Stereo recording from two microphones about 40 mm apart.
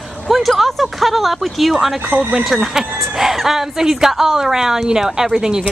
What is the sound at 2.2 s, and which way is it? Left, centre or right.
Speech, right.